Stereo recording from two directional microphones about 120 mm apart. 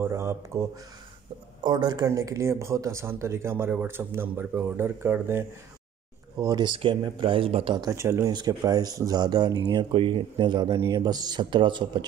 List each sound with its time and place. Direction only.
0.0 s speech: 25° right (ahead or behind)
1.6 s speech: 35° right (ahead or behind); by 5.4 s 20° right (ahead or behind)
6.3 s speech: 30° right (ahead or behind); by 7.8 s 50° right (ahead or behind)
7.8 s speech: 20° right (ahead or behind)
8.3 s speech: 35° right (ahead or behind)
9.9 s speech: 45° right (ahead or behind)